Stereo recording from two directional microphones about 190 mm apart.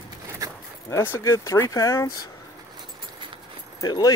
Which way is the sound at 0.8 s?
15° left (ahead or behind).